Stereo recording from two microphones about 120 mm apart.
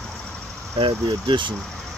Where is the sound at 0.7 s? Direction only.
45° right (ahead or behind).